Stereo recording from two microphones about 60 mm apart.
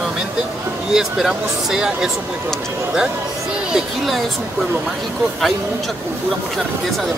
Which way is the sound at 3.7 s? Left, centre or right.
Centre.